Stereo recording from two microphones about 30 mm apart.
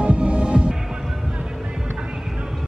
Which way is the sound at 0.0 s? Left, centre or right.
Right.